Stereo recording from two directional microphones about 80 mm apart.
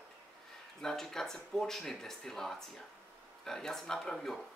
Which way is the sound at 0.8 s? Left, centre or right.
Centre.